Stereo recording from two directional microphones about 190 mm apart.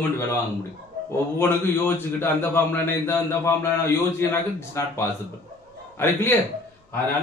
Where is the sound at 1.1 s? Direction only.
10° left (ahead or behind).